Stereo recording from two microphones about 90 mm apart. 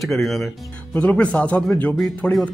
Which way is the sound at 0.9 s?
15° left (ahead or behind).